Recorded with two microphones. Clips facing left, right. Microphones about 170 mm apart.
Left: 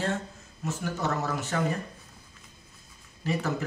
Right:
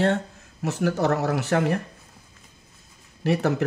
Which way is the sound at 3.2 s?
70° right (ahead or behind).